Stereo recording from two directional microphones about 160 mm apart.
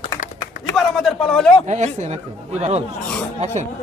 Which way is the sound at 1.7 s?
45° right (ahead or behind).